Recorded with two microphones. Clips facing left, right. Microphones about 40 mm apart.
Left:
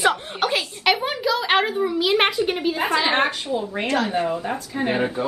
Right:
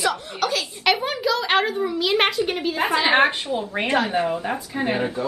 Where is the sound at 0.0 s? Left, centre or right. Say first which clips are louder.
Left 3 dB; left.